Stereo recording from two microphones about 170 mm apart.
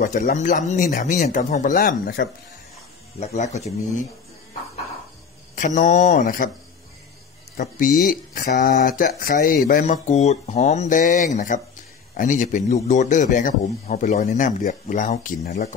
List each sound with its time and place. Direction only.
0.2 s speech: 50° left (ahead or behind)
3.2 s speech: 40° left (ahead or behind)
5.6 s speech: 45° left (ahead or behind)
7.5 s speech: 45° left (ahead or behind)